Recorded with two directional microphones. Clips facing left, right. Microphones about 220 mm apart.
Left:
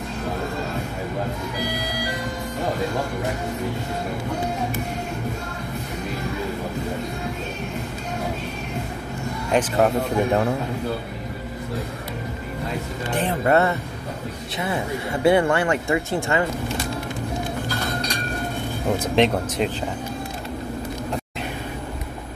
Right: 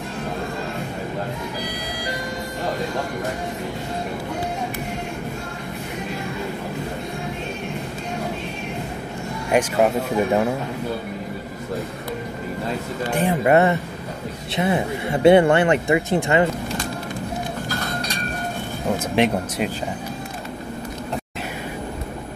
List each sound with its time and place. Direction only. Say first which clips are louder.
9.5 s speech: right 1 dB; 10° right (ahead or behind)
13.1 s speech: right 2 dB; 10° right (ahead or behind)
19.1 s speech: left 1 dB; 10° right (ahead or behind)